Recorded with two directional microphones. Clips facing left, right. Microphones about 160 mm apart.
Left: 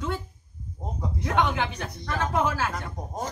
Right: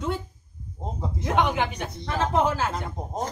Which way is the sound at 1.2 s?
20° right (ahead or behind).